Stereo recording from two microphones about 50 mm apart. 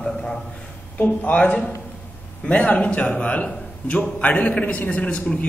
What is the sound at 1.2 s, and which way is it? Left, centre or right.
A man's voice, left.